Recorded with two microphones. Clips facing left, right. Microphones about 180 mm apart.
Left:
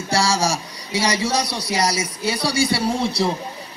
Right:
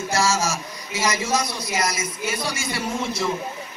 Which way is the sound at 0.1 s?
30° left (ahead or behind).